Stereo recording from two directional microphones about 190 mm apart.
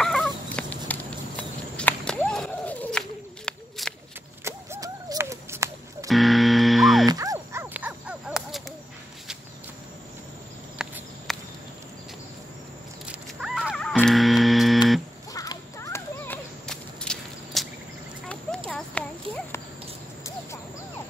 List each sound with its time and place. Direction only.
0.0 s fowl: 5° left (ahead or behind)
3.4 s walk: centre (ahead or behind)
4.5 s a sound: 15° right (ahead or behind)
6.0 s buzzer: centre (ahead or behind)
7.1 s dog: 20° right (ahead or behind)
7.7 s crow: 5° right (ahead or behind)
10.8 s walk: 5° right (ahead or behind)
11.3 s a sound: centre (ahead or behind)
13.0 s a sound: 5° right (ahead or behind)
14.0 s music: centre (ahead or behind)
15.3 s clip-clop: 15° left (ahead or behind)
16.6 s walk: 5° left (ahead or behind)
18.7 s horse: 5° left (ahead or behind)